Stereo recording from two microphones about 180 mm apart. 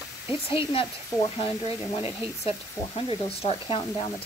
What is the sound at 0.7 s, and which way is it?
Speech, 30° left (ahead or behind).